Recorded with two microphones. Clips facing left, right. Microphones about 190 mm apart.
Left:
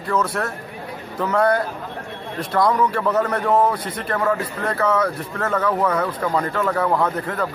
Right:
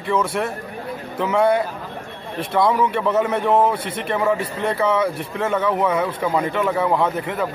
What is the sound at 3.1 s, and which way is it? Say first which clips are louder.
A man's voice: right 1 dB; 10° right (ahead or behind).